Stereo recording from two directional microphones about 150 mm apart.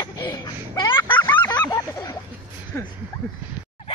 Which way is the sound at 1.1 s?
15° left (ahead or behind).